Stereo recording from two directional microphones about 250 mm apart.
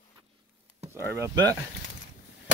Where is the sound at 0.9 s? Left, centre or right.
Centre.